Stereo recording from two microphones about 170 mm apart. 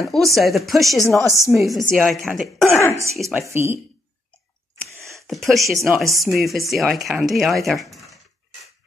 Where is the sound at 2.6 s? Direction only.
15° left (ahead or behind).